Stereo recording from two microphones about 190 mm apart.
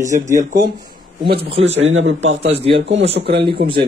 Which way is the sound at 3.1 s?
60° right (ahead or behind).